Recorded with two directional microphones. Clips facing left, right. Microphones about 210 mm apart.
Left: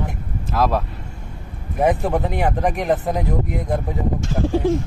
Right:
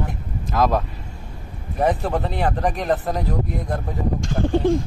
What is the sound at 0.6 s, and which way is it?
Speech, 5° left (ahead or behind).